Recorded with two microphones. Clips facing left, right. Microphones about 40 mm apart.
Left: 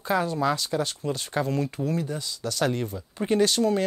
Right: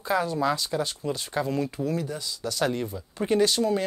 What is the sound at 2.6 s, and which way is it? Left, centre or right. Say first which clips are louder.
Speech: left 1 dB; left.